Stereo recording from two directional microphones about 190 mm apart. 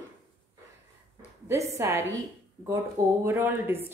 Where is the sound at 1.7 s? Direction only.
15° right (ahead or behind).